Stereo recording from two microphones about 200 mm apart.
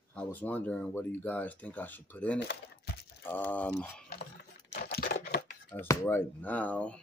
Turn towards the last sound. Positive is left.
turn(degrees=5)  # may be behind; listen again after turning